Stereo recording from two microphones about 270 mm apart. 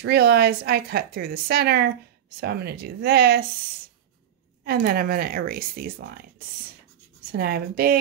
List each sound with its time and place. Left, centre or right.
0.0 s a woman's voice: right
4.6 s a woman's voice: right
7.3 s a woman's voice: right